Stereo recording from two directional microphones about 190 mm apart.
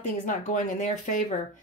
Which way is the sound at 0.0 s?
40° left (ahead or behind).